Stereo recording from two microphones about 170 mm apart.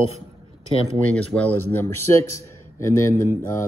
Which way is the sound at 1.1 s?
10° left (ahead or behind).